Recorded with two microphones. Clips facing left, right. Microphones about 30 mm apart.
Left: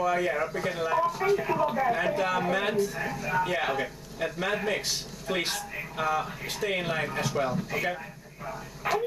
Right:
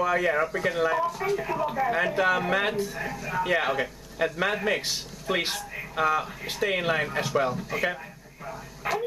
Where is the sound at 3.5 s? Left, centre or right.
Centre.